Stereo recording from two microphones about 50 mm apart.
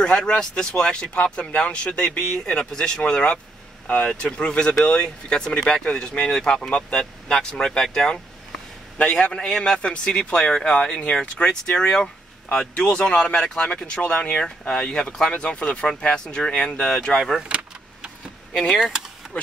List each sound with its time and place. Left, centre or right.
0.0 s speech: centre
8.1 s a sound: left
9.2 s speech: left
17.4 s vehicle: right
18.5 s speech: centre
18.8 s speech: centre